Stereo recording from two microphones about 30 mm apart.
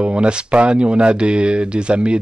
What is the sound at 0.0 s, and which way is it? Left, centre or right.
Speech, right.